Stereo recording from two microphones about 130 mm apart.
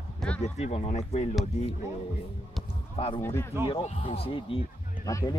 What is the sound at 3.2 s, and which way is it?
Speech, 20° left (ahead or behind).